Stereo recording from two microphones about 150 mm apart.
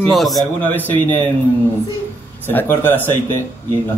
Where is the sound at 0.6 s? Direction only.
10° left (ahead or behind).